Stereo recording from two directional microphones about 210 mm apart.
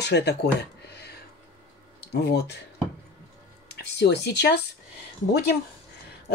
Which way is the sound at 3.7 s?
55° left (ahead or behind).